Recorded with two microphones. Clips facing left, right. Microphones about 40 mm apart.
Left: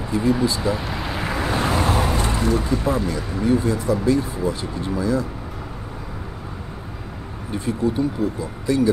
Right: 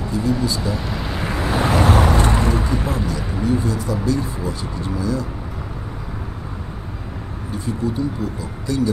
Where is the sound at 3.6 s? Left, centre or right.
Centre.